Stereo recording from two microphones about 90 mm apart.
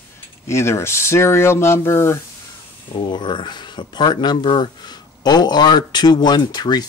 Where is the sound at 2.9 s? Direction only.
65° left (ahead or behind).